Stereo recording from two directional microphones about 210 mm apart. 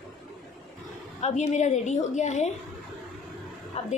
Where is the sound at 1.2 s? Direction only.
35° left (ahead or behind).